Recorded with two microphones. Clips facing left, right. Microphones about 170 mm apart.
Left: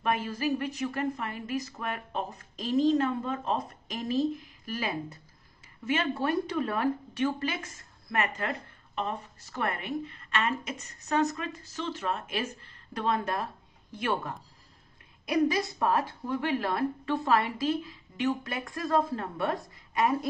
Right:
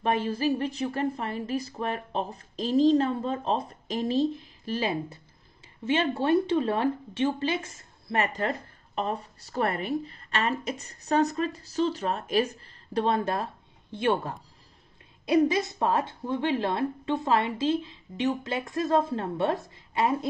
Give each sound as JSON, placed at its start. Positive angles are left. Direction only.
{"t": 0.0, "sound": "speech", "side_deg": -30}